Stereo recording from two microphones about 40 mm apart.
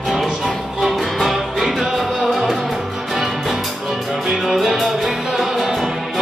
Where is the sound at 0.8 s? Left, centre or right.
Centre.